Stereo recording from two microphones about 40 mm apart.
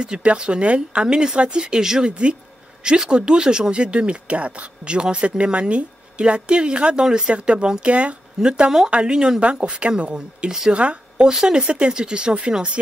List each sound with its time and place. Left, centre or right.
0.0 s speech: right
1.0 s speech: centre
8.4 s speech: centre
11.2 s speech: centre